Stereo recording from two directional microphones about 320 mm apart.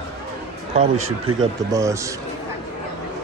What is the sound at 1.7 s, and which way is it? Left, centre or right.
Speech, centre.